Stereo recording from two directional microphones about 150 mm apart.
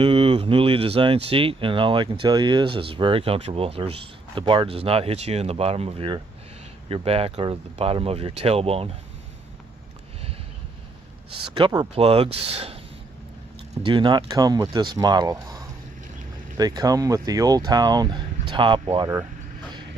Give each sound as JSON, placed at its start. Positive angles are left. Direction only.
{"t": 0.0, "sound": "speech", "side_deg": -40}
{"t": 11.5, "sound": "speech", "side_deg": -30}
{"t": 12.0, "sound": "speech", "side_deg": -40}
{"t": 13.8, "sound": "speech", "side_deg": -30}